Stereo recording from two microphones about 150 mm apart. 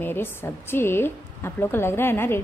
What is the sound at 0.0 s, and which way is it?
A woman's voice, 15° left (ahead or behind).